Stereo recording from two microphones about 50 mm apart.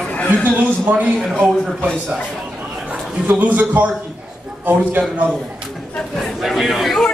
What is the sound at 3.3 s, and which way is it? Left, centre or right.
Speech, right.